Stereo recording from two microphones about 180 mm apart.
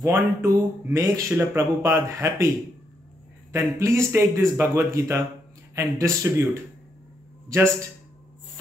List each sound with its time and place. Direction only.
0.0 s speech: 15° right (ahead or behind)
3.5 s speech: 15° right (ahead or behind)